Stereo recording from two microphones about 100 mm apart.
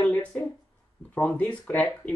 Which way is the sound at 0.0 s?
15° left (ahead or behind).